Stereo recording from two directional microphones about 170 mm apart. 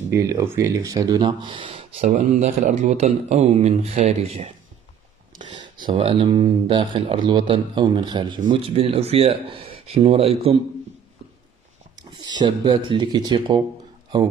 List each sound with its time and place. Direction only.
0.1 s speech: 20° right (ahead or behind)
2.0 s speech: 50° right (ahead or behind)
5.9 s speech: 30° right (ahead or behind)
12.1 s speech: 25° right (ahead or behind)